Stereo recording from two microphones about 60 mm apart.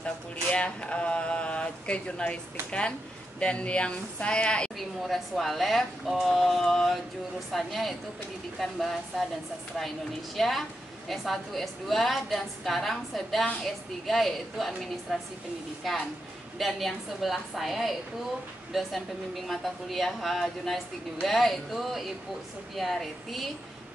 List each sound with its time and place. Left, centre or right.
0.0 s speech: centre
3.3 s speech: centre
4.7 s a woman's voice: centre
10.3 s a woman's voice: centre